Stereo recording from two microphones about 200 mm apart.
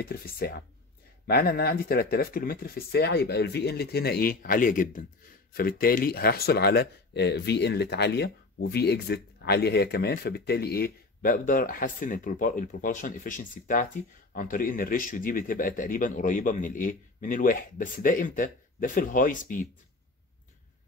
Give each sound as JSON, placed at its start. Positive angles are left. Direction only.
{"t": 0.0, "sound": "speech", "side_deg": 50}